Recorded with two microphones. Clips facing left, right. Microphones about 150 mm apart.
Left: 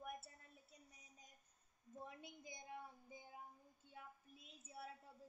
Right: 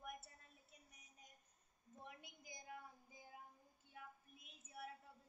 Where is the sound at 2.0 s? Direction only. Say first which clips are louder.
Left 3 dB; 30° left (ahead or behind).